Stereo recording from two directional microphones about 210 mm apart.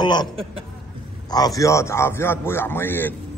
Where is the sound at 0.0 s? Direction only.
20° left (ahead or behind).